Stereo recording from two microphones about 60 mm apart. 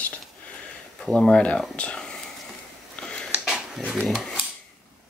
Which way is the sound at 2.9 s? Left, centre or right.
Centre.